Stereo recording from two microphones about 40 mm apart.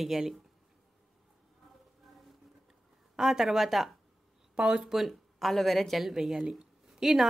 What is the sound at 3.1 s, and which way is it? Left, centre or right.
Speech, centre.